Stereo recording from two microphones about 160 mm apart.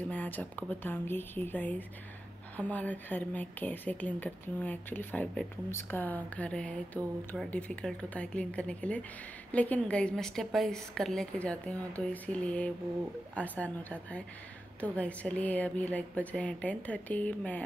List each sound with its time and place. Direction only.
0.1 s a woman's voice: 10° left (ahead or behind)